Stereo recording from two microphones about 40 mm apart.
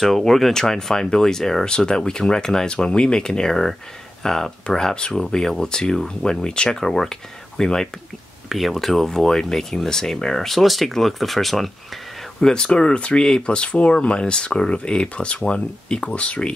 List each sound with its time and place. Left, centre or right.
0.0 s speech: centre
8.5 s speech: centre
12.4 s speech: centre